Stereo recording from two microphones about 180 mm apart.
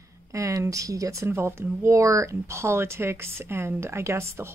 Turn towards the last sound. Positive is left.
turn(degrees=-15)  # may be behind; listen again after turning